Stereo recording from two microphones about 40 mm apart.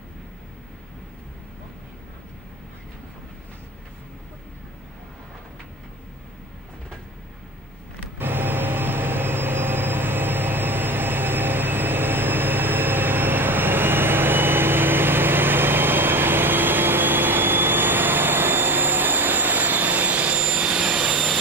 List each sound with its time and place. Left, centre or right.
8.2 s vehicle: right; by 21.3 s centre